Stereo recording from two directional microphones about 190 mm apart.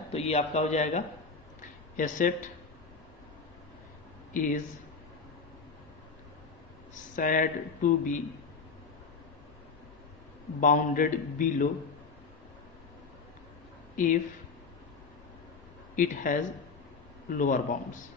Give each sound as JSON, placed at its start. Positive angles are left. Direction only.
{"t": 0.1, "sound": "a man's voice", "side_deg": 35}
{"t": 4.3, "sound": "speech", "side_deg": 45}
{"t": 7.2, "sound": "a man's voice", "side_deg": 45}
{"t": 10.6, "sound": "a man's voice", "side_deg": 45}
{"t": 13.9, "sound": "speech", "side_deg": 45}
{"t": 16.0, "sound": "a man's voice", "side_deg": 45}